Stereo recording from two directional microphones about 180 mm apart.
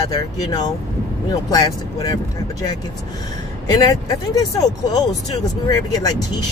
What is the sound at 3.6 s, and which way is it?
Speech, 20° left (ahead or behind).